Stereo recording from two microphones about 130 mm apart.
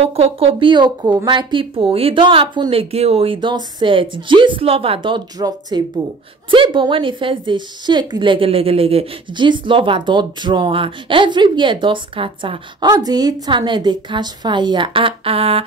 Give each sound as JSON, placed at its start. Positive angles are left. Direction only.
{"t": 0.0, "sound": "a woman's voice", "side_deg": -50}